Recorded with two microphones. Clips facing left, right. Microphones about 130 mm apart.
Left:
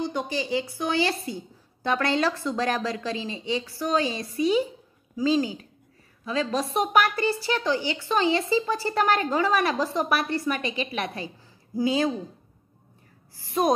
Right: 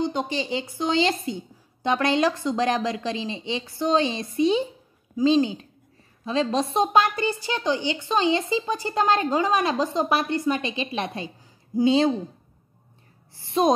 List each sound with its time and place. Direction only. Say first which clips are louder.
0.0 s a woman's voice: right 2 dB; 20° right (ahead or behind)
13.4 s a woman's voice: right 2 dB; 25° right (ahead or behind)